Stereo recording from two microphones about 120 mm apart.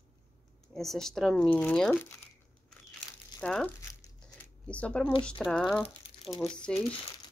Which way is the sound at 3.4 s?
10° left (ahead or behind).